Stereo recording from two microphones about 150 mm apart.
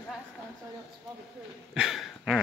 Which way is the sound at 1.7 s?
Centre (ahead or behind).